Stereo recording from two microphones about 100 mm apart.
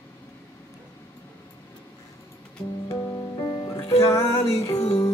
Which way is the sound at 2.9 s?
35° left (ahead or behind).